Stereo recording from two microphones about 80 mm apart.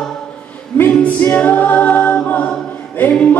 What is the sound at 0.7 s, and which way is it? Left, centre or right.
Music, left.